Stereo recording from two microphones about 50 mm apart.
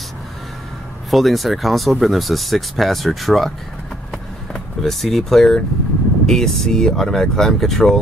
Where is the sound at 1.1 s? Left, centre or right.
Centre.